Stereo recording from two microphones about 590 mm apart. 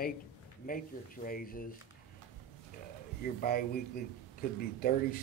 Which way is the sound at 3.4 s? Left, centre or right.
Centre.